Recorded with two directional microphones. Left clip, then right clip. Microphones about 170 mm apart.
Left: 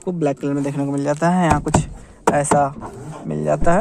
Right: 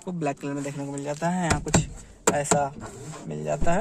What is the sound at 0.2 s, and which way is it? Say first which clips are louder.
Speech: left 8 dB; 35° left (ahead or behind).